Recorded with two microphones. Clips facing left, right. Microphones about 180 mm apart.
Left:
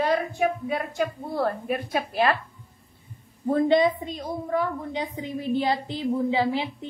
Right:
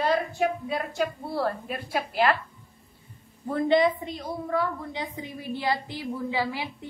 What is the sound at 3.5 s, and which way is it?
A woman's voice, 20° left (ahead or behind).